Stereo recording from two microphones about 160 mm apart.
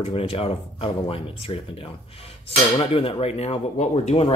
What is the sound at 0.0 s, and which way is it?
Speech, 35° left (ahead or behind).